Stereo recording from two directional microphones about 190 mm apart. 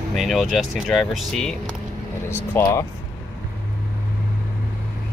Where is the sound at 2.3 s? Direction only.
15° left (ahead or behind).